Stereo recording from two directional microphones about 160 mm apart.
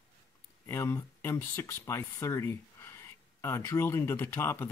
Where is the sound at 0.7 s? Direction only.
15° left (ahead or behind).